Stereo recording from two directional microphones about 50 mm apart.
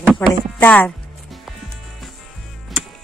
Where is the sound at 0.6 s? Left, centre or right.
Left.